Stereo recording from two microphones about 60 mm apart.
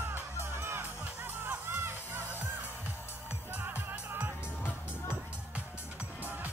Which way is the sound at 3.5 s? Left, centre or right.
Right.